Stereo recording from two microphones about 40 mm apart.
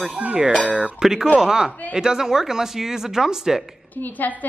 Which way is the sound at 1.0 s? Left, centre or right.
Centre.